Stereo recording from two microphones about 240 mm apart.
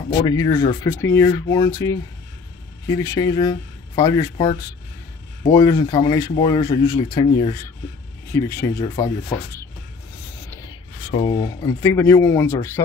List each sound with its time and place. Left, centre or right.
0.2 s speech: centre
3.0 s speech: centre
5.5 s speech: centre
10.5 s speech: centre